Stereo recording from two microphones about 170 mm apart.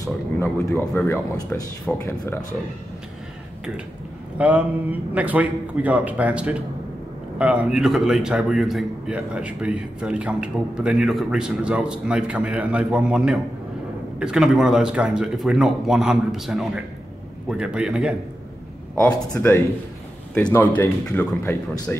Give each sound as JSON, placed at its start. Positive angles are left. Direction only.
{"t": 0.4, "sound": "speech", "side_deg": 15}
{"t": 4.4, "sound": "a man's voice", "side_deg": -10}
{"t": 18.9, "sound": "speech", "side_deg": 15}